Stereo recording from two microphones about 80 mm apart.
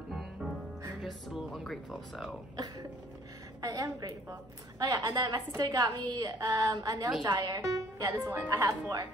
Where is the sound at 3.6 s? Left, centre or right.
Right.